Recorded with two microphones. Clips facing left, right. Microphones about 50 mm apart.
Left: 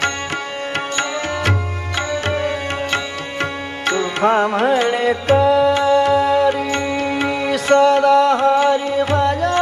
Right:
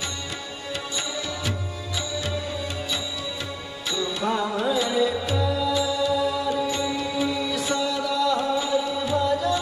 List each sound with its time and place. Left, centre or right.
2.0 s music: left